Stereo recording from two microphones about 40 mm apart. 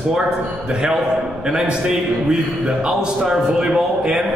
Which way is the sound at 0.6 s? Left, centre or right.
Right.